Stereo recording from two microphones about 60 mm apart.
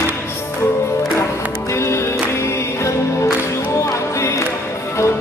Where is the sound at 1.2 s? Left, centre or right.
Left.